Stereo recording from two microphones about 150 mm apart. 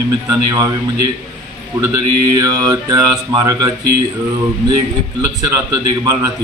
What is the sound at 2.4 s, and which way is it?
A man's voice, 25° right (ahead or behind).